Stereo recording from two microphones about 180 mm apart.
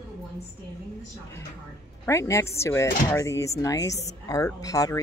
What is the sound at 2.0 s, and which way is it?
Speech, 15° left (ahead or behind).